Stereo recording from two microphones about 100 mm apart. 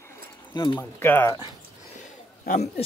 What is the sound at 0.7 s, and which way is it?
Speech, 20° left (ahead or behind).